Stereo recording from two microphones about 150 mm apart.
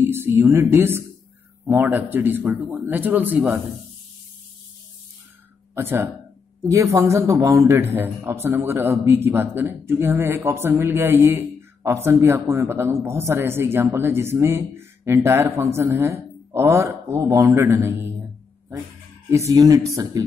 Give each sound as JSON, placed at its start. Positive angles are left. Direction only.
{"t": 0.0, "sound": "a man's voice", "side_deg": -15}
{"t": 5.8, "sound": "a man's voice", "side_deg": -15}
{"t": 19.3, "sound": "speech", "side_deg": -20}